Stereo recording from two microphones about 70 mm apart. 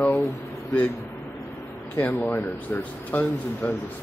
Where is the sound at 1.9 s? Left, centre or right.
Left.